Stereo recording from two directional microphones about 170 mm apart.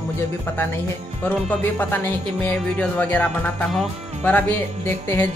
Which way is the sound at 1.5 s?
10° left (ahead or behind).